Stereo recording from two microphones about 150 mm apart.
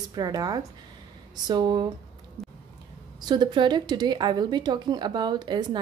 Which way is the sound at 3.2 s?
30° right (ahead or behind).